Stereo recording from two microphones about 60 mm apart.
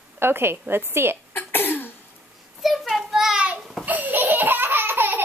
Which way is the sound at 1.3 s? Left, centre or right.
Left.